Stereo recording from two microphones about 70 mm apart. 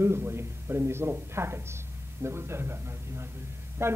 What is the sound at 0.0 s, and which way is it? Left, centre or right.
Speech, right.